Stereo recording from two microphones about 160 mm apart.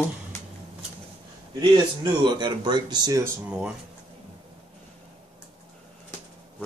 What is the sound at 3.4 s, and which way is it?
Speech, 5° right (ahead or behind).